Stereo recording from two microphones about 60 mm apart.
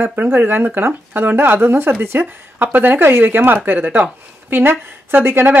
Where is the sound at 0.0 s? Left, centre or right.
Right.